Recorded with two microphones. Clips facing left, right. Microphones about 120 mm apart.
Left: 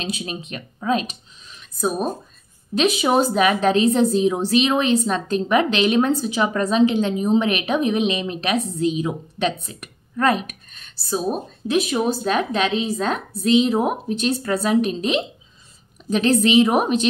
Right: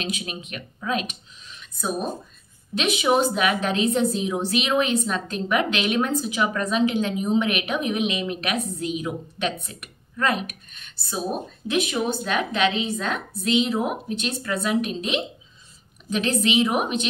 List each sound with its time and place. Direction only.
0.0 s a woman's voice: 30° left (ahead or behind)
2.7 s a woman's voice: 35° left (ahead or behind)